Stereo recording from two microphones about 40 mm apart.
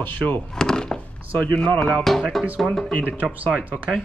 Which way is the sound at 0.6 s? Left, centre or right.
Centre.